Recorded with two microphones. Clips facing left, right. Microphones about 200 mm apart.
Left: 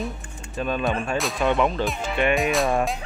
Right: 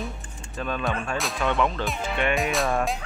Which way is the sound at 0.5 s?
15° left (ahead or behind).